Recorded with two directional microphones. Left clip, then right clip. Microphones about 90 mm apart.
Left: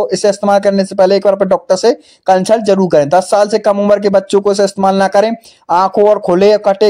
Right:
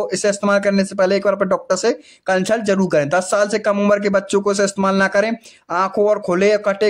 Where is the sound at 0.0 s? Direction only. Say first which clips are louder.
Left 7 dB; 30° left (ahead or behind).